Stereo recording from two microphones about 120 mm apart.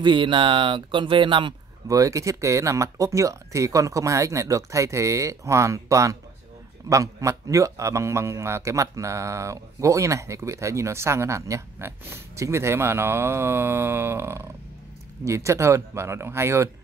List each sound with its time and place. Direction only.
0.0 s speech: 40° right (ahead or behind)
1.9 s a man's voice: 25° right (ahead or behind)